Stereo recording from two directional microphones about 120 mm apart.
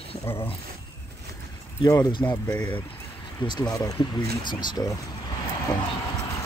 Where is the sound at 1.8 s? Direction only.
35° left (ahead or behind).